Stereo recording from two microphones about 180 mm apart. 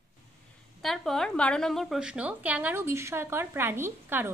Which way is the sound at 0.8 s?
Centre (ahead or behind).